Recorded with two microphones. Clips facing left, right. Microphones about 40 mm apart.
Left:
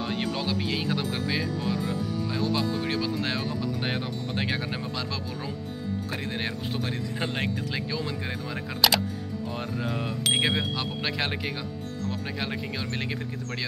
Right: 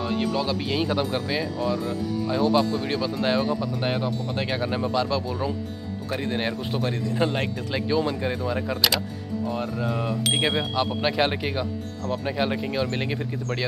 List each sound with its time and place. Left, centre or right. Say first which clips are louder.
0.0 s speech: right 4 dB; centre
0.5 s speech: right 3 dB; centre
2.2 s speech: right 8 dB; centre
3.8 s speech: right 4 dB; centre
4.5 s speech: right 5 dB; centre
7.2 s speech: right 7 dB; centre
7.7 s speech: right 7 dB; centre
9.5 s speech: right 4 dB; centre
10.8 s speech: right 7 dB; centre